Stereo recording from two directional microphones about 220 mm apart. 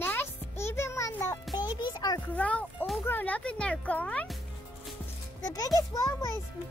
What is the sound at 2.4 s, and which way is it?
A child's voice, 5° left (ahead or behind).